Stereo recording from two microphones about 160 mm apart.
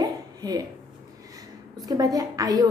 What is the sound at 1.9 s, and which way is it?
Speech, 25° right (ahead or behind).